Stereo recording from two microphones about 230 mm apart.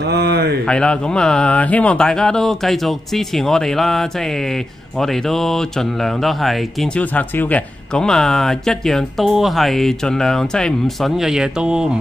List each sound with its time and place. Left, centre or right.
0.0 s speech: right
0.7 s speech: centre